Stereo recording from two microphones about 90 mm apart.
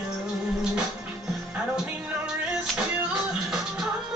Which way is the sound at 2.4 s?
10° right (ahead or behind).